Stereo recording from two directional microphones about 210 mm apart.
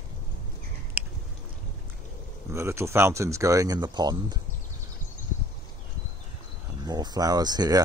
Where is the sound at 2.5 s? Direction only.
15° right (ahead or behind).